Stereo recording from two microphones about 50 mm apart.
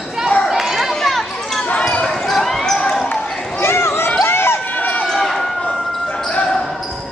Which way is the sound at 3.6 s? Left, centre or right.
Left.